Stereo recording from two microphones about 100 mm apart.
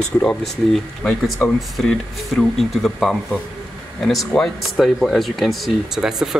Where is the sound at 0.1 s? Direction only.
20° left (ahead or behind).